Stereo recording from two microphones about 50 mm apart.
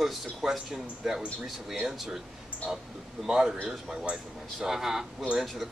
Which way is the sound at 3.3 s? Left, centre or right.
Centre.